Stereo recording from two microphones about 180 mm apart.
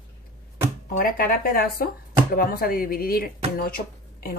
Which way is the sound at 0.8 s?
50° left (ahead or behind).